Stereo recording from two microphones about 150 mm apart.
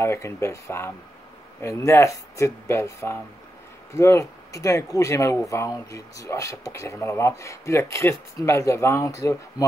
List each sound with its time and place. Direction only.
0.0 s speech: 20° left (ahead or behind)